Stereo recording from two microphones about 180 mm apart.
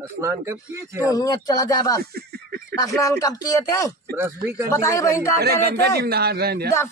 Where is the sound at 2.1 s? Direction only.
60° right (ahead or behind).